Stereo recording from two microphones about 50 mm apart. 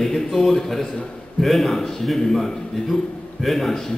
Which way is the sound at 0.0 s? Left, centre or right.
Centre.